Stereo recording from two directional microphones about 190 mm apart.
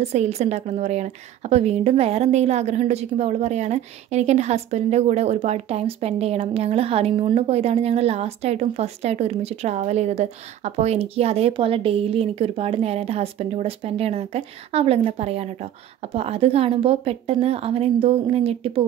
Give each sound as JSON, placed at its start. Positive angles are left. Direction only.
{"t": 0.0, "sound": "a woman's voice", "side_deg": -35}